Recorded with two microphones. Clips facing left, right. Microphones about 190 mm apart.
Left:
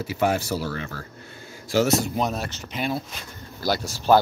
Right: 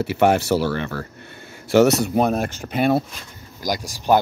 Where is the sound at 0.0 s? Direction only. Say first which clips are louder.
Right 6 dB; 65° right (ahead or behind).